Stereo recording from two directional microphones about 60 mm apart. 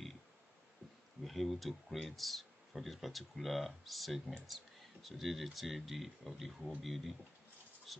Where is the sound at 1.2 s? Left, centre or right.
Centre.